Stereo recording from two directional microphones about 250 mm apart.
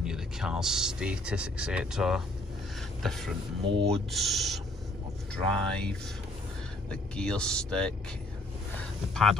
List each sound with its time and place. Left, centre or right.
0.0 s speech: centre
3.6 s speech: right
4.1 s speech: centre
9.1 s speech: centre